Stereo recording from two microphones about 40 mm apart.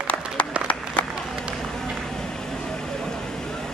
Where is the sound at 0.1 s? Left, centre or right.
Left.